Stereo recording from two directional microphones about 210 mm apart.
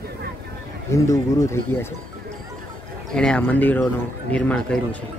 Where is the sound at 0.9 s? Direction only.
15° left (ahead or behind).